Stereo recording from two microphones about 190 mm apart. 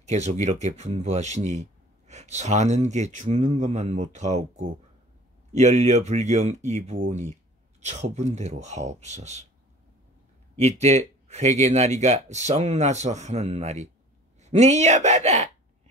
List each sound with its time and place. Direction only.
0.0 s speech: 35° right (ahead or behind)
10.6 s speech: 35° right (ahead or behind)